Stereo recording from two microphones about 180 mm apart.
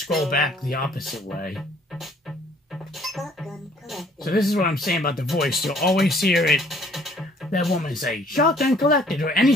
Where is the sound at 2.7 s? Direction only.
Centre (ahead or behind).